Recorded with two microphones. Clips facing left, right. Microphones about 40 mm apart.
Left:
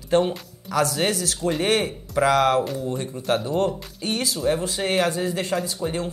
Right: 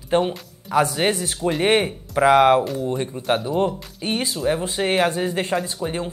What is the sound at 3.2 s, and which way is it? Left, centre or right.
Speech, centre.